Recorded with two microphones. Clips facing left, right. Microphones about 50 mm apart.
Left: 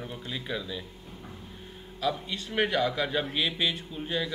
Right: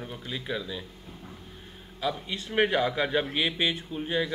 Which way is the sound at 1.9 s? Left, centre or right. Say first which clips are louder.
Left 1 dB; centre.